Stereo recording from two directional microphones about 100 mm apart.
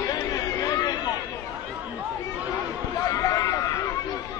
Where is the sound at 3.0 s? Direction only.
35° left (ahead or behind).